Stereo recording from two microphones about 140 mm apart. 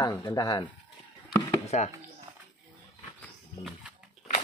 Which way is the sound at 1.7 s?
55° left (ahead or behind).